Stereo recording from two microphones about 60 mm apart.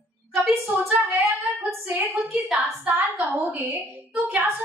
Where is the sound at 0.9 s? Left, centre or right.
Right.